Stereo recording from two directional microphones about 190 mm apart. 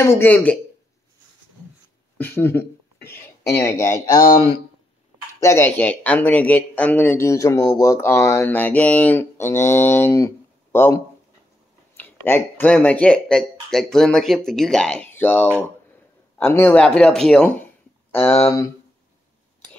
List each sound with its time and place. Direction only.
0.0 s speech: 10° left (ahead or behind)
2.1 s speech: 10° left (ahead or behind)
5.4 s speech: 15° left (ahead or behind)
12.0 s speech: 10° left (ahead or behind)